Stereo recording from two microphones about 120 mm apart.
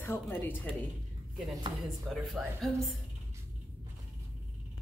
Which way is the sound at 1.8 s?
Centre (ahead or behind).